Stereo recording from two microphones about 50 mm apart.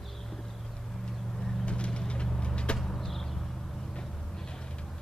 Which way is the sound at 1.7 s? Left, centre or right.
Left.